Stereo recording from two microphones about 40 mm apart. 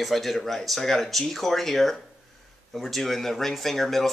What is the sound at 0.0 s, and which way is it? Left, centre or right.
Speech, centre.